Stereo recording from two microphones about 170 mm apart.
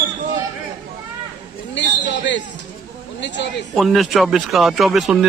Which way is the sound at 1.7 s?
90° left.